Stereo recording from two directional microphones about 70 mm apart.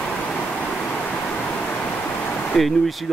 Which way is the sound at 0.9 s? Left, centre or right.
Centre.